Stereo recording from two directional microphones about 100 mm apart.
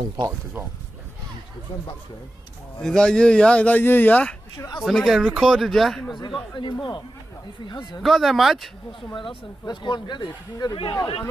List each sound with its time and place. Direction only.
0.2 s speech: 25° right (ahead or behind)
2.8 s speech: 5° left (ahead or behind)
4.8 s speech: centre (ahead or behind)
6.0 s speech: 45° left (ahead or behind)
8.0 s speech: centre (ahead or behind)
9.1 s speech: 55° left (ahead or behind)